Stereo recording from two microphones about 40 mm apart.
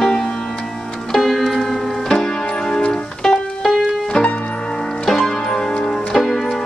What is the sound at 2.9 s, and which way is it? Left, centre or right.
Music, centre.